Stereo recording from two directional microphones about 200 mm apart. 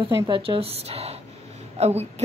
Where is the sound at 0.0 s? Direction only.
25° right (ahead or behind).